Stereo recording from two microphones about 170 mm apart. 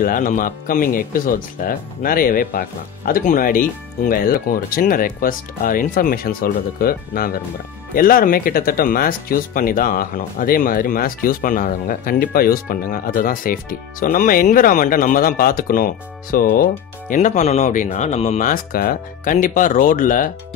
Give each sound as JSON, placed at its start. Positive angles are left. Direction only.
{"t": 0.0, "sound": "speech", "side_deg": 50}